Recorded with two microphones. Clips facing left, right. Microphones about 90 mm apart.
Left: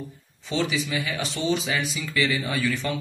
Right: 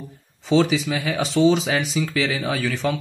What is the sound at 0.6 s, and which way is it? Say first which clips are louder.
Speech: right 6 dB; 90° right.